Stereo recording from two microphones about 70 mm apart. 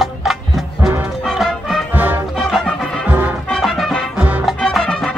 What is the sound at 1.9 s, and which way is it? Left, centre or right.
Music, right.